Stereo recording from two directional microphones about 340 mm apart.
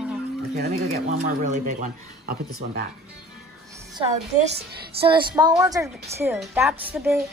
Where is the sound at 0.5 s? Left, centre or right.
Right.